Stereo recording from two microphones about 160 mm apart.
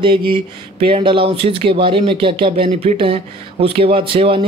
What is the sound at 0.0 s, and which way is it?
Speech, 30° right (ahead or behind).